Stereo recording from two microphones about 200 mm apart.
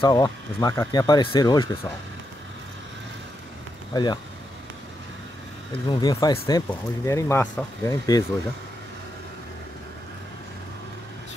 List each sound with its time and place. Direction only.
0.0 s speech: 20° left (ahead or behind)
3.9 s speech: 20° left (ahead or behind)
5.7 s speech: 20° left (ahead or behind)
6.7 s speech: 15° left (ahead or behind)